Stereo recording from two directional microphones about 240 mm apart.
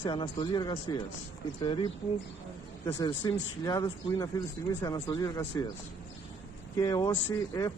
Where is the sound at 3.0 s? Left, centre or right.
Centre.